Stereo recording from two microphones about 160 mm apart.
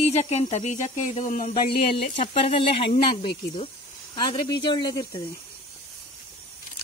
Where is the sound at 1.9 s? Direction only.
35° left (ahead or behind).